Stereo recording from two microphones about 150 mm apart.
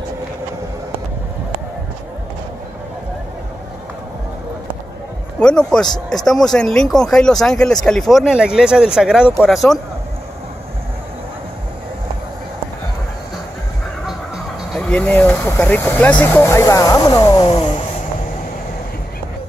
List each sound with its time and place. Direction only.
5.4 s speech: 5° left (ahead or behind)
14.0 s music: centre (ahead or behind); by 17.8 s 30° left (ahead or behind)